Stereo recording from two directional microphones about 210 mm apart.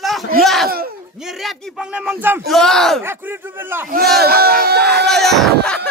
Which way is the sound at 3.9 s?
45° right (ahead or behind).